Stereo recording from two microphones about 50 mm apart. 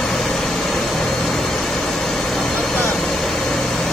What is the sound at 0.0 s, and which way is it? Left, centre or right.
Vehicle, centre.